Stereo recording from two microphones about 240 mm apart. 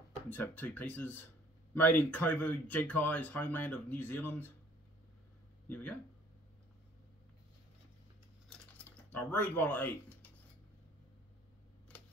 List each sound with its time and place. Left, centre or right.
0.3 s speech: centre
5.7 s speech: centre
8.5 s typing: centre